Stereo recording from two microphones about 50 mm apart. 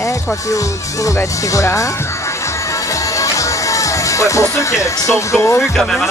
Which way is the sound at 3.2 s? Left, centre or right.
Left.